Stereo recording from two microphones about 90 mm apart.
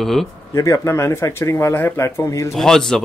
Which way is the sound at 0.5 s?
35° left (ahead or behind).